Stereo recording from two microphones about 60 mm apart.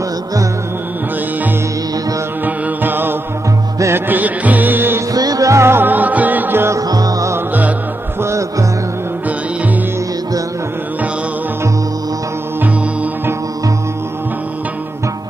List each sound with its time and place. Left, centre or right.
2.4 s music: right
5.1 s music: right
5.6 s music: right
5.9 s music: right
6.9 s music: right
8.2 s music: right